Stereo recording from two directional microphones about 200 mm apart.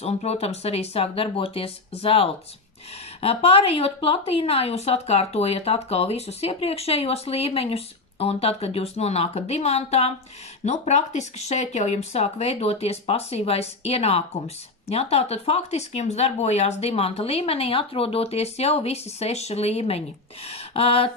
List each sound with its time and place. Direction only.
0.0 s a woman's voice: 30° left (ahead or behind)